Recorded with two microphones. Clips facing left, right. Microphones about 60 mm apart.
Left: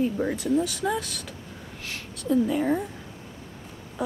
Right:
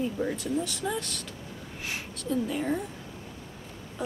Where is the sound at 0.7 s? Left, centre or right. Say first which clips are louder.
Left 4 dB; centre.